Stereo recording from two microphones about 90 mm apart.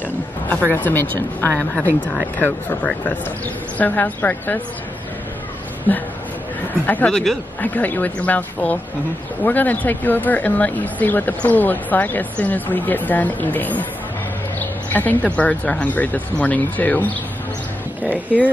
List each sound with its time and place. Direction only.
0.5 s speech: 20° left (ahead or behind)
5.9 s speech: 20° left (ahead or behind)